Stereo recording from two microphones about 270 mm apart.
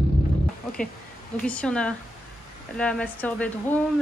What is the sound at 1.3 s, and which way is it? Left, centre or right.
A woman's voice, centre.